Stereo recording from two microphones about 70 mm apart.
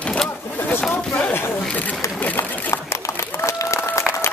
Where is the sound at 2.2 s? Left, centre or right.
Left.